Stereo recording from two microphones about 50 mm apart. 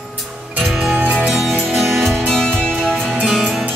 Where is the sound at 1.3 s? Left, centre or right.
Centre.